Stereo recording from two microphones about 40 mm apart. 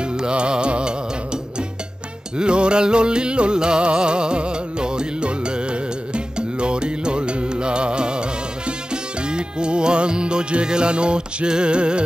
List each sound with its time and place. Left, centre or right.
0.0 s music: right